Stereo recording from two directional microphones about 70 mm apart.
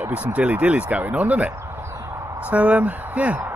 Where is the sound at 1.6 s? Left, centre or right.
Right.